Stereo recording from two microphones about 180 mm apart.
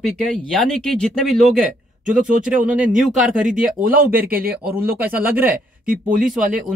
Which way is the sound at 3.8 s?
50° right (ahead or behind).